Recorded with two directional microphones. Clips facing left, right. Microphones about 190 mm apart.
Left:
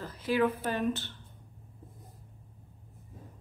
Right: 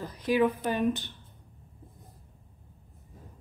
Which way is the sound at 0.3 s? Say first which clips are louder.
Right 3 dB; 15° right (ahead or behind).